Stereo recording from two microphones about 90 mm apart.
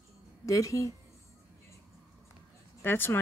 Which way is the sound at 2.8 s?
25° left (ahead or behind).